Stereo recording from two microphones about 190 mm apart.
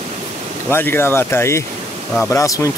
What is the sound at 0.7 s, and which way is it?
Speech, 10° left (ahead or behind).